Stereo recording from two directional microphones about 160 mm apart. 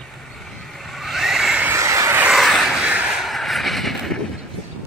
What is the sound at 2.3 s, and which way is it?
Vehicle, centre (ahead or behind).